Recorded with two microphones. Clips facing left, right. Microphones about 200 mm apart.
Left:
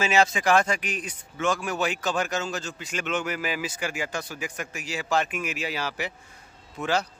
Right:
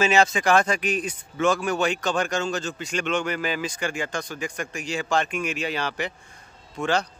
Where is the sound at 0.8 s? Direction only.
25° right (ahead or behind).